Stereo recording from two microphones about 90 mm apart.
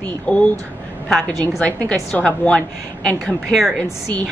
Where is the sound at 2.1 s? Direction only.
10° left (ahead or behind).